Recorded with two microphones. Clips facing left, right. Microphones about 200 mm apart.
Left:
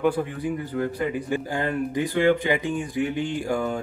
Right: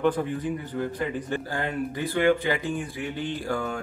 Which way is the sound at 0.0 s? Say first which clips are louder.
Left 1 dB; 10° left (ahead or behind).